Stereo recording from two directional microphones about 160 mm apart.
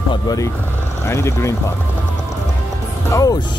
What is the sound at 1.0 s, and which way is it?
Speech, 15° left (ahead or behind).